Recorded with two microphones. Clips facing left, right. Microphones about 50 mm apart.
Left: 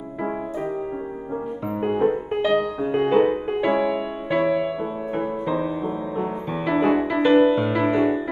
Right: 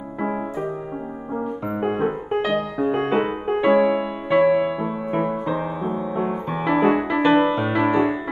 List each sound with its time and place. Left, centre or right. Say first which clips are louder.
1.9 s music: left 3 dB; right
6.5 s music: right 1 dB; centre
7.8 s music: right 3 dB; right